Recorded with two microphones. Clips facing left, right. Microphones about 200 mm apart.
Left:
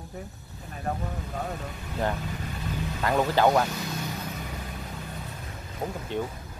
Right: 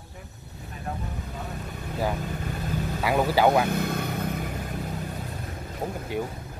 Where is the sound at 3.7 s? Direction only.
55° right (ahead or behind).